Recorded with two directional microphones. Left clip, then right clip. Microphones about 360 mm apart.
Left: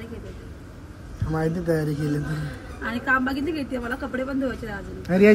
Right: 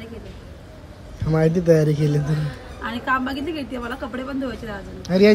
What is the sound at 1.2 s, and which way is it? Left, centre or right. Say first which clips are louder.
Speech: right 8 dB; right.